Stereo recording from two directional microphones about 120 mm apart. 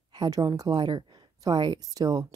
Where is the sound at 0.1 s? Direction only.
35° right (ahead or behind).